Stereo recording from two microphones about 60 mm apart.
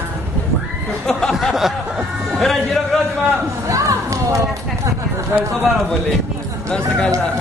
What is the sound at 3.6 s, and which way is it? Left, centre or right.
Run, right.